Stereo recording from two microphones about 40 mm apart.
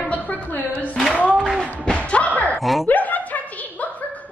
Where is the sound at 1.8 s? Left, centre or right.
Left.